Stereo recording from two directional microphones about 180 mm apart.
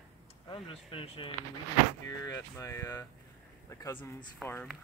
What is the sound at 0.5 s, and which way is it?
Speech, 30° left (ahead or behind).